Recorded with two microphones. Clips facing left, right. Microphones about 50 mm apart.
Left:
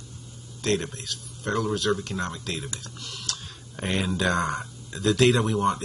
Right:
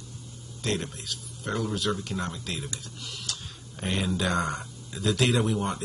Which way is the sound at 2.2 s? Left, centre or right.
Centre.